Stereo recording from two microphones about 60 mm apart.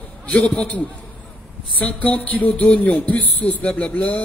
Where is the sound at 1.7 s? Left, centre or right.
Left.